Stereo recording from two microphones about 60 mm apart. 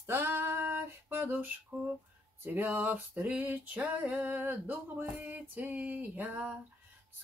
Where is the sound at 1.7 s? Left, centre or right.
Centre.